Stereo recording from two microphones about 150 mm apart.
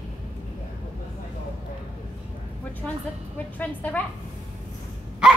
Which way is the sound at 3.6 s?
10° left (ahead or behind).